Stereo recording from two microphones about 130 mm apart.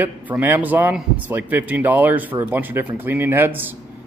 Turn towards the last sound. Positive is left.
turn(degrees=-15)  # may be behind; listen again after turning